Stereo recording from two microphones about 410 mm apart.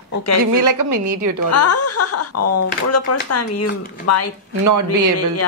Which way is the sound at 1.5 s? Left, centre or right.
Left.